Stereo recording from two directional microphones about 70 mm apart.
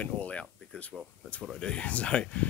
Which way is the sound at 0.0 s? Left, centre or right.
Centre.